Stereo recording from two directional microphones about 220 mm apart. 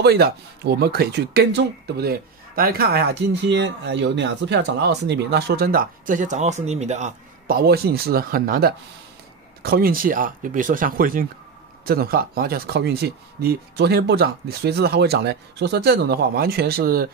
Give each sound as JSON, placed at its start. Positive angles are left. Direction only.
{"t": 0.0, "sound": "speech", "side_deg": -45}